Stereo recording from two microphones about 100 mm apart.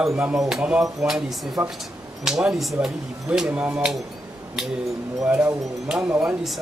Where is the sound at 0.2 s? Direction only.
5° right (ahead or behind).